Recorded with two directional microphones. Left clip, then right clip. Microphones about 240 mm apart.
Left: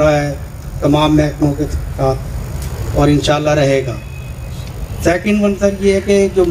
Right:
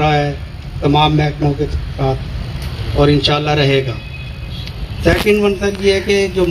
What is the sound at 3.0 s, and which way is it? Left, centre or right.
Speech, left.